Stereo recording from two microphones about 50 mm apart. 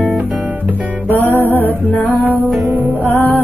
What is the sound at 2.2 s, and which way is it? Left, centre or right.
Music, right.